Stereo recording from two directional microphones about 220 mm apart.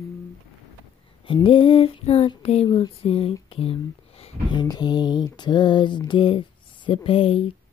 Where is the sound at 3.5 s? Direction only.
25° left (ahead or behind).